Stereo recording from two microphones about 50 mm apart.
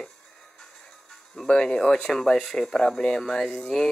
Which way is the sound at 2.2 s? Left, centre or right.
Centre.